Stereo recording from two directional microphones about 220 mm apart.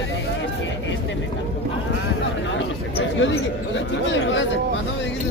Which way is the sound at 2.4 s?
55° left (ahead or behind).